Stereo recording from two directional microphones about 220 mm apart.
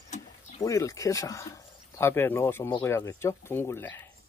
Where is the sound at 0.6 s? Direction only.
15° left (ahead or behind).